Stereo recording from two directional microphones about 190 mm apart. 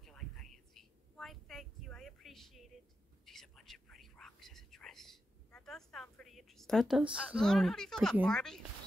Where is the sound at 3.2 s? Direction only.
Centre (ahead or behind).